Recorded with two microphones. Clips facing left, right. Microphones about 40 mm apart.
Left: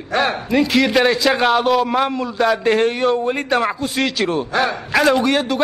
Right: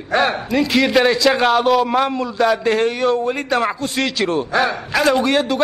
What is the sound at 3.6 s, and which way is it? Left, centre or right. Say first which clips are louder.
A man's voice: even; centre.